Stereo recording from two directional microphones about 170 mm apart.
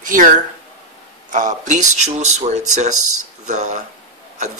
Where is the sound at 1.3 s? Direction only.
45° right (ahead or behind).